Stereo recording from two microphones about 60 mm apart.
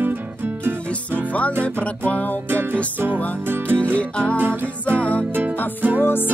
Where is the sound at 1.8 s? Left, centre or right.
Left.